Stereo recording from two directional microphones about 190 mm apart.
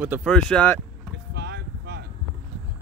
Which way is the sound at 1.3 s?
65° right (ahead or behind).